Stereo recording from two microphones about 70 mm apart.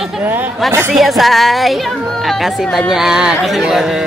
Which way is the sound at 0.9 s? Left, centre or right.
Centre.